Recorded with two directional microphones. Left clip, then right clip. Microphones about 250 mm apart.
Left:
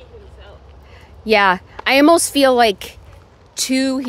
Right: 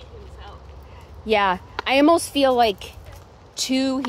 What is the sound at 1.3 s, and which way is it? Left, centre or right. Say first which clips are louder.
Speech: left 6 dB; left.